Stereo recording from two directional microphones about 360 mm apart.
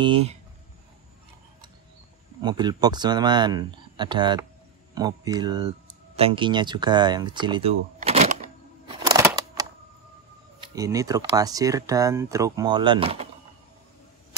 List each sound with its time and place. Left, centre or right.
0.0 s speech: centre
2.4 s speech: centre
8.8 s a sound: centre
10.6 s speech: centre